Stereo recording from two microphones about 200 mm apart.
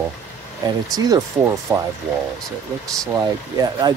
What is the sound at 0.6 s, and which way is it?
Speech, 20° right (ahead or behind).